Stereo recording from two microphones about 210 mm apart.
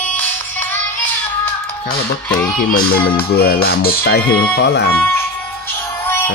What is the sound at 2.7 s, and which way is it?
Speech, 45° left (ahead or behind).